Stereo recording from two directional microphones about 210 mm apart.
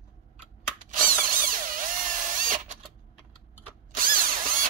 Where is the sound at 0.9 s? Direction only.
40° right (ahead or behind).